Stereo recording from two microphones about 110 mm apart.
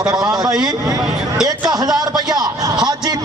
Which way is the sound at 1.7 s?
35° right (ahead or behind).